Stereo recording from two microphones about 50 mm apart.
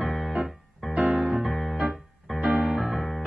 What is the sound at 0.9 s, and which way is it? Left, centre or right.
Music, right.